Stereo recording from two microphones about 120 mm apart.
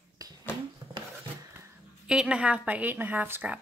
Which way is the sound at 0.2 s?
30° right (ahead or behind).